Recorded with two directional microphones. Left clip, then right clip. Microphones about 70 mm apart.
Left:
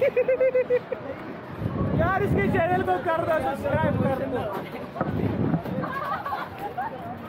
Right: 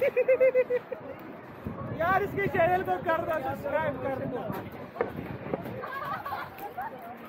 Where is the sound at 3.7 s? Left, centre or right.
Centre.